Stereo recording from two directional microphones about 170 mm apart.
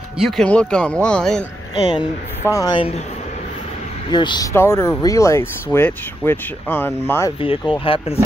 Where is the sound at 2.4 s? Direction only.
20° left (ahead or behind); by 3.1 s 35° left (ahead or behind).